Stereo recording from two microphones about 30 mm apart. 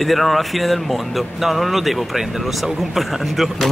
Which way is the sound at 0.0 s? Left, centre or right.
Centre.